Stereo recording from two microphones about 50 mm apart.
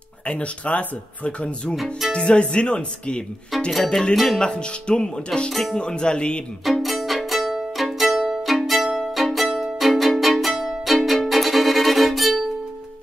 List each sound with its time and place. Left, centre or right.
0.3 s speech: left
1.8 s speech: centre
2.1 s speech: left; by 4.4 s centre
4.4 s speech: centre
5.5 s speech: centre
5.8 s speech: centre
6.6 s music: centre